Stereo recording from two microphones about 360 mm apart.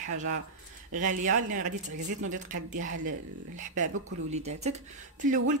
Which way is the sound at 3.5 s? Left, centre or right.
Right.